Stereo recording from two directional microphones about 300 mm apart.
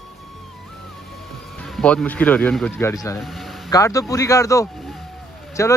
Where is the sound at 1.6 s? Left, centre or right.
Centre.